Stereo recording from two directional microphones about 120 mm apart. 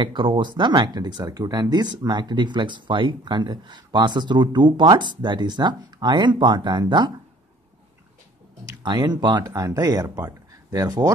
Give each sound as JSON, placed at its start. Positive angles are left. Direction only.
{"t": 0.0, "sound": "speech", "side_deg": -40}
{"t": 8.6, "sound": "speech", "side_deg": -35}